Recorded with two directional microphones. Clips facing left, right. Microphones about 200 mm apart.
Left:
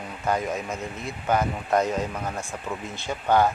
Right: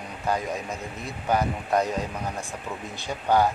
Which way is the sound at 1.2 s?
15° right (ahead or behind).